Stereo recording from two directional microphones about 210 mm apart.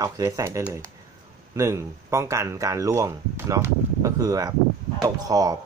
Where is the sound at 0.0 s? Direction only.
15° right (ahead or behind).